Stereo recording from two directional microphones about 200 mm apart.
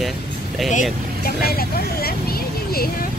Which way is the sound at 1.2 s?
50° left (ahead or behind).